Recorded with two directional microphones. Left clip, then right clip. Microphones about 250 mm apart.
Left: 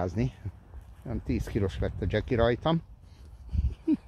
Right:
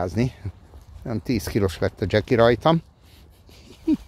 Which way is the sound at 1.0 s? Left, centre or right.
Right.